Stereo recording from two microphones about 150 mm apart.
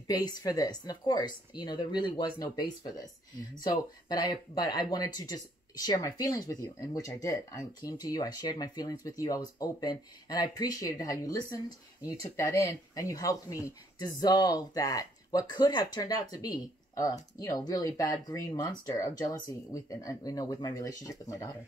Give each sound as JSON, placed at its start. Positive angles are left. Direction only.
{"t": 0.0, "sound": "speech", "side_deg": 25}